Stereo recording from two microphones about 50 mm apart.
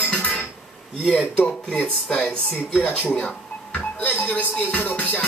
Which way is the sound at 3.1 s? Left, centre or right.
Left.